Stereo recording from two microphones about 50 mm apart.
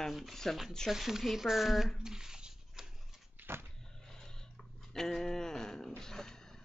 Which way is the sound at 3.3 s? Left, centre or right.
Right.